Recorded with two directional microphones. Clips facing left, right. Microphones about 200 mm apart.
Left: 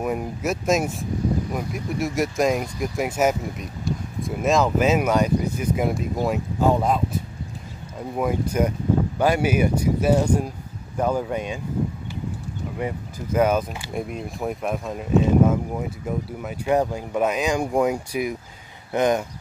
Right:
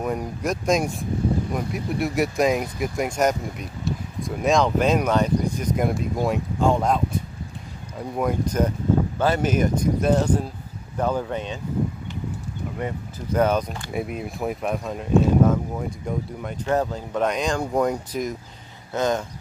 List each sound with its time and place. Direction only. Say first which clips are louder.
0.0 s speech: left 1 dB; 5° left (ahead or behind)
12.7 s speech: left 2 dB; 10° left (ahead or behind)
13.9 s speech: right 1 dB; 5° right (ahead or behind); by 19.2 s 15° left (ahead or behind)